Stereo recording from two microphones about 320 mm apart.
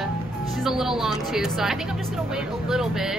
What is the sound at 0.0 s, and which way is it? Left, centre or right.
Music, centre.